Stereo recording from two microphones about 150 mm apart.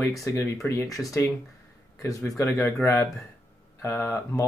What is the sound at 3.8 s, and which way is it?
Speech, 15° left (ahead or behind).